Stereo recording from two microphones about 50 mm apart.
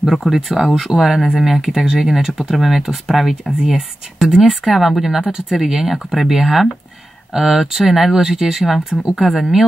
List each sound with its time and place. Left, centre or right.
0.0 s speech: centre